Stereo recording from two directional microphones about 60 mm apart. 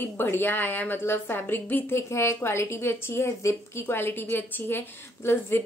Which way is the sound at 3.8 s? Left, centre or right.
Left.